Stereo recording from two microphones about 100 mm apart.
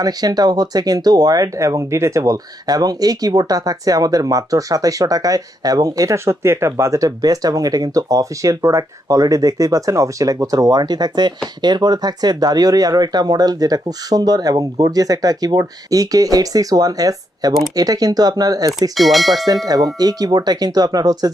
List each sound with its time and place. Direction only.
0.0 s speech: 40° right (ahead or behind)
18.9 s speech: centre (ahead or behind)
19.4 s speech: 40° right (ahead or behind)